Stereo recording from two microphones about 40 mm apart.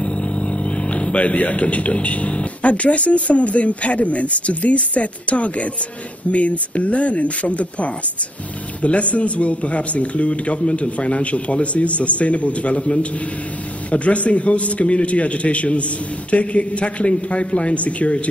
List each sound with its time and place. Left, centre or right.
0.0 s speech: left